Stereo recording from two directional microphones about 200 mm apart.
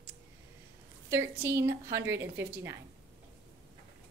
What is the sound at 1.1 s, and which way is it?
A woman's voice, 15° right (ahead or behind).